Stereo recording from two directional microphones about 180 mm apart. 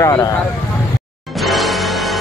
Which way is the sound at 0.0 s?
20° left (ahead or behind).